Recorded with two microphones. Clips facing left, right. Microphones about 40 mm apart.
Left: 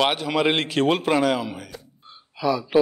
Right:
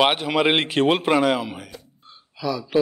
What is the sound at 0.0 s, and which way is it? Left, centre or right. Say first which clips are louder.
A man's voice: right 2 dB; centre.